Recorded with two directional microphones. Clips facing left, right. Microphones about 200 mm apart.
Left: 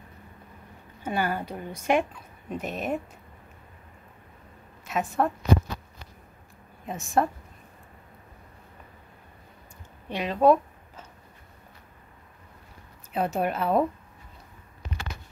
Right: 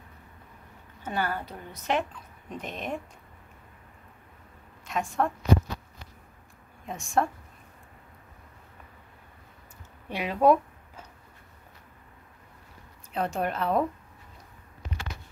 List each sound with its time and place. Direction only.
1.0 s a woman's voice: 10° left (ahead or behind)
4.8 s a woman's voice: 5° left (ahead or behind)
6.9 s a woman's voice: centre (ahead or behind)
10.0 s a sound: 10° right (ahead or behind)
13.1 s a woman's voice: 5° left (ahead or behind)